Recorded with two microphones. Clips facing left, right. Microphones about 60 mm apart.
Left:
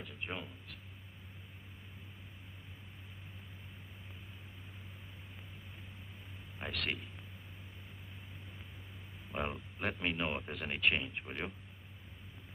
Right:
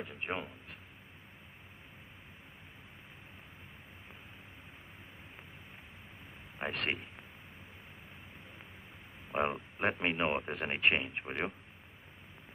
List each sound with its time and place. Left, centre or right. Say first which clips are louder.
0.0 s speech: right 5 dB; right
6.6 s speech: right 4 dB; right
9.3 s speech: right 6 dB; right